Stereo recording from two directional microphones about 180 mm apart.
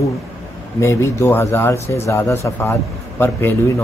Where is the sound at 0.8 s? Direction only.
15° left (ahead or behind).